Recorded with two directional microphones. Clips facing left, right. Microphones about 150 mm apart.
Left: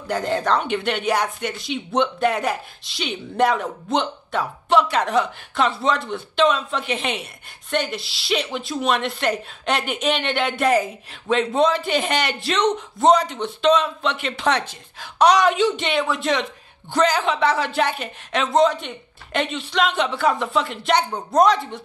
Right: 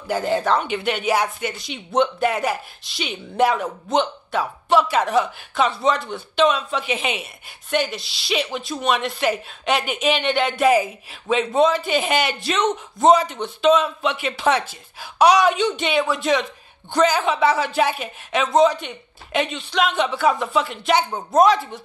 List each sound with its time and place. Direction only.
0.1 s speech: 5° right (ahead or behind)